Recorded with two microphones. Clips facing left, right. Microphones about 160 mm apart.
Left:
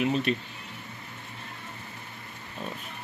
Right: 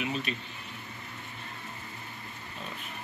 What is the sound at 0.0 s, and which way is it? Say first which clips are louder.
Speech: left 7 dB; 50° left (ahead or behind).